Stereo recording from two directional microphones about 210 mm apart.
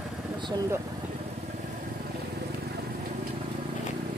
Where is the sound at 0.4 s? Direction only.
20° right (ahead or behind).